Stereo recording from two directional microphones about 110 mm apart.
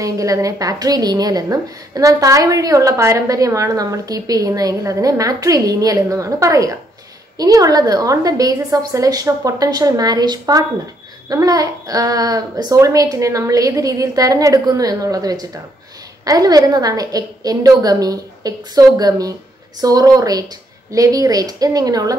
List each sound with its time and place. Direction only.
0.0 s a woman's voice: 30° right (ahead or behind)